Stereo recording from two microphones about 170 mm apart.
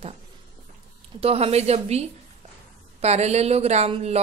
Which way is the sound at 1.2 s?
35° right (ahead or behind).